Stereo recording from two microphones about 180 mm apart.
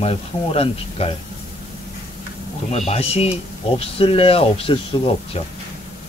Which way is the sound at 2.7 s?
35° left (ahead or behind).